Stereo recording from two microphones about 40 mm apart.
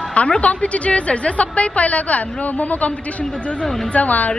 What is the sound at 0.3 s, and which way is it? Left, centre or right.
A woman's voice, left.